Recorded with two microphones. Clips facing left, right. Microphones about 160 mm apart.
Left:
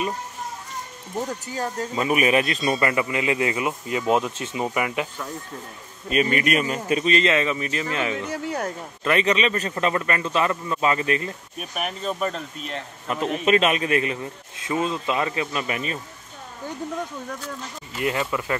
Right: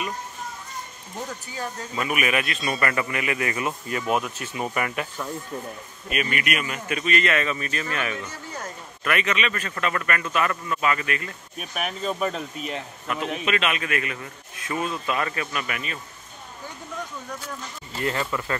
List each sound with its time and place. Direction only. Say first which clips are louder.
2.0 s a man's voice: left 5 dB; 30° left (ahead or behind)
6.0 s a man's voice: left 6 dB; 30° left (ahead or behind)
8.3 s speech: left 9 dB; 65° left (ahead or behind)
9.0 s a man's voice: left 4 dB; 30° left (ahead or behind)
11.5 s speech: right 2 dB; centre (ahead or behind)
13.1 s a man's voice: left 6 dB; 35° left (ahead or behind)
17.9 s speech: left 2 dB; 15° left (ahead or behind)